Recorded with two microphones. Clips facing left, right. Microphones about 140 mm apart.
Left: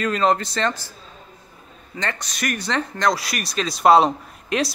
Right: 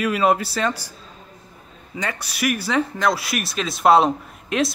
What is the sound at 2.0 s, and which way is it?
Speech, 10° right (ahead or behind).